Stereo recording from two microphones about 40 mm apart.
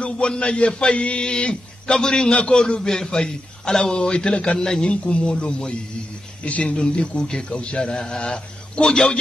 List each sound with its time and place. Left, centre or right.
0.0 s a man's voice: left